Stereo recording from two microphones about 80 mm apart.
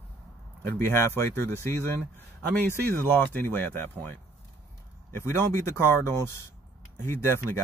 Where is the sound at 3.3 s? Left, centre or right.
Left.